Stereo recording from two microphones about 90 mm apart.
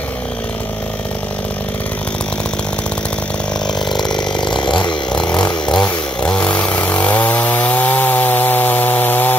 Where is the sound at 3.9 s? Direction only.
5° left (ahead or behind).